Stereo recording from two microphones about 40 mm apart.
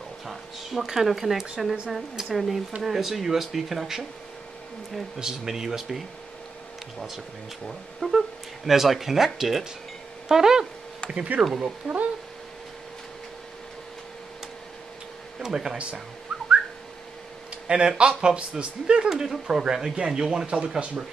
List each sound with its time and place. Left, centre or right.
0.3 s speech: centre
5.2 s speech: centre
7.6 s speech: centre
11.3 s speech: right
15.3 s speech: centre
16.3 s whistling: centre
17.6 s a man's voice: right
19.0 s speech: centre
19.4 s a man's voice: right